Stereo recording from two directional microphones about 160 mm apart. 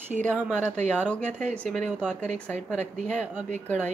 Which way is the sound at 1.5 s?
5° left (ahead or behind).